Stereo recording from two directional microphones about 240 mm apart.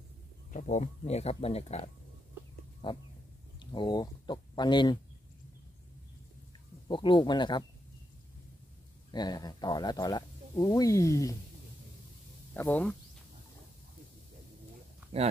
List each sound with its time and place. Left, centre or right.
0.5 s speech: left
2.8 s a sound: centre
3.5 s speech: centre
6.9 s speech: centre
9.1 s speech: centre
12.5 s speech: centre
15.1 s speech: right